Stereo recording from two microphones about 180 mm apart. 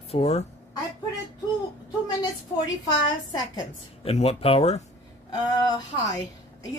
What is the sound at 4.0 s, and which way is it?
Speech, 35° left (ahead or behind).